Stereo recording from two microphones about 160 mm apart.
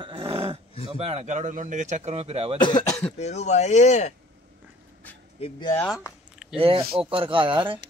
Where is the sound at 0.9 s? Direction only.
40° right (ahead or behind).